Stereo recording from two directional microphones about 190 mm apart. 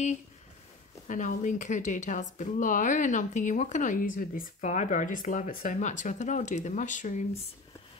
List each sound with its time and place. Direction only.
1.0 s a woman's voice: 40° left (ahead or behind)